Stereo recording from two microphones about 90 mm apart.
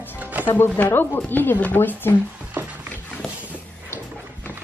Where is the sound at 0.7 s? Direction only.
20° left (ahead or behind).